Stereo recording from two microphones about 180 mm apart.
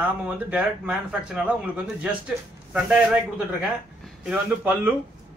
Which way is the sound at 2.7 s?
5° right (ahead or behind).